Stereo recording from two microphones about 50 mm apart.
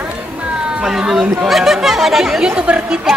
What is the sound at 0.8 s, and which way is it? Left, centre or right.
Speech, centre.